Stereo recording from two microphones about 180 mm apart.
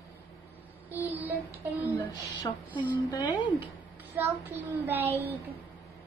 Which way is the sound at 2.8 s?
20° left (ahead or behind).